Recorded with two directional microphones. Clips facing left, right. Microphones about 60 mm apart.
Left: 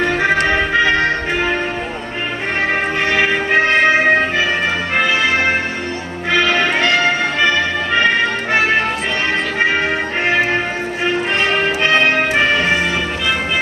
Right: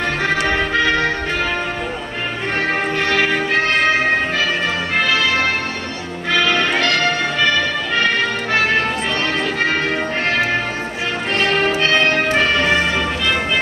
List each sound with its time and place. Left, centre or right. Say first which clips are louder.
0.5 s music: left 2 dB; centre
3.0 s music: left 1 dB; centre
11.3 s music: even; left